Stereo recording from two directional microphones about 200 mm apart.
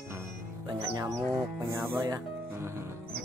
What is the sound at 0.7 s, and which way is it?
Speech, 20° right (ahead or behind).